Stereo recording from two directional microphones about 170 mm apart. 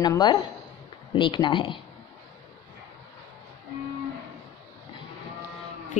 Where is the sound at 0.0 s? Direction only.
25° left (ahead or behind).